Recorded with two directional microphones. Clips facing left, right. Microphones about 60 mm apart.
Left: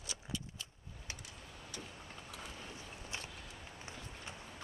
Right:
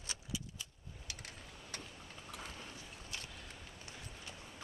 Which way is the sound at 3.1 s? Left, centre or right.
Left.